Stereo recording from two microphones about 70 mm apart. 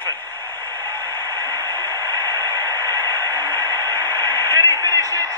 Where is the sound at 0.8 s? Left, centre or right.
Right.